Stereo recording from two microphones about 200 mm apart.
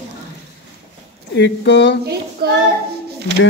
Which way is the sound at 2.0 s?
55° right (ahead or behind).